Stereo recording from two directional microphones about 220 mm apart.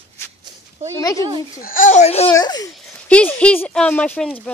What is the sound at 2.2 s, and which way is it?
Speech, 15° left (ahead or behind).